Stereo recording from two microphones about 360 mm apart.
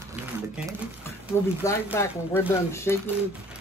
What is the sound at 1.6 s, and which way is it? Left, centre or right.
Speech, centre.